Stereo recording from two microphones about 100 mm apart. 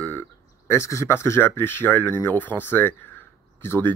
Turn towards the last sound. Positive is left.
turn(degrees=25)  # may be behind; listen again after turning